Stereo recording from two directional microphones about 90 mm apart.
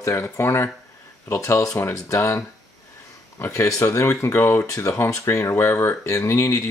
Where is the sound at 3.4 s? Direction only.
35° left (ahead or behind).